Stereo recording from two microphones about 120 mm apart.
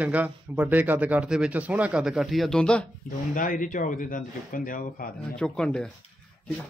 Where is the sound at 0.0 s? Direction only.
15° right (ahead or behind); by 2.9 s 5° left (ahead or behind).